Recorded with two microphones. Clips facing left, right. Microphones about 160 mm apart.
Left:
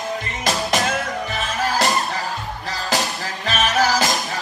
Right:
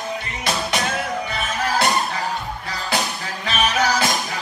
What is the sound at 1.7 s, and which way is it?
Music, centre (ahead or behind).